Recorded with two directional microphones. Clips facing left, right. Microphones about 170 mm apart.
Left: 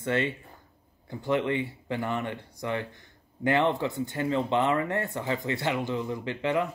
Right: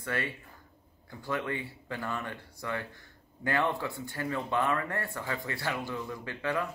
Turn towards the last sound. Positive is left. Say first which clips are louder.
# left 5 dB
turn(degrees=20)  # may be behind; listen again after turning